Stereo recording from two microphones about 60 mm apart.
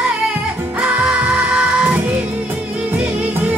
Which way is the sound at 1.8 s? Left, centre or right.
Right.